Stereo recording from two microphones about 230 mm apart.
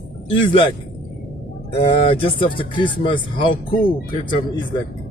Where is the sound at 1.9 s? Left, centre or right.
Left.